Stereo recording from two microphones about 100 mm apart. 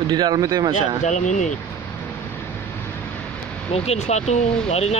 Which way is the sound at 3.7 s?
90° left.